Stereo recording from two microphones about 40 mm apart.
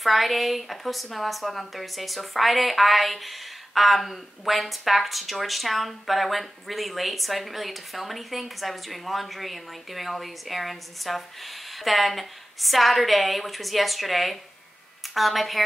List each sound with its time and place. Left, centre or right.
0.0 s speech: centre